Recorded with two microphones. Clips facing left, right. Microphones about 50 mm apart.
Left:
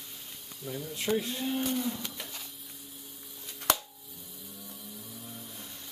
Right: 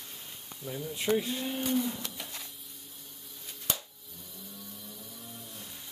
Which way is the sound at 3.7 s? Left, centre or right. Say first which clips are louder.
Left 8 dB; left.